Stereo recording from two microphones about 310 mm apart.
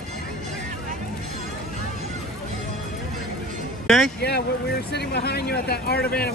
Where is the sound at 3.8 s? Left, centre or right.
Centre.